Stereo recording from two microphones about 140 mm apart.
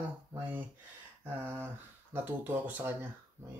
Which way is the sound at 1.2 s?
15° right (ahead or behind).